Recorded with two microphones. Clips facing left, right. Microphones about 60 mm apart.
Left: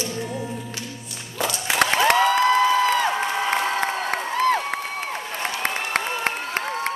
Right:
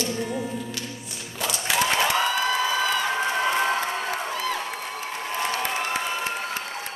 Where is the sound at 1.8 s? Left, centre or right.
Left.